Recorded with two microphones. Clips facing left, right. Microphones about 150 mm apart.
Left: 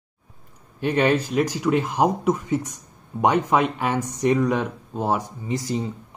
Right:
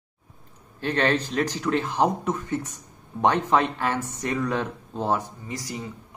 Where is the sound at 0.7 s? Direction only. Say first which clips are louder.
Left 4 dB; 15° left (ahead or behind).